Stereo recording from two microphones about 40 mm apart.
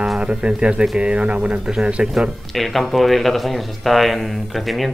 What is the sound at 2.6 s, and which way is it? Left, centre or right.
Speech, centre.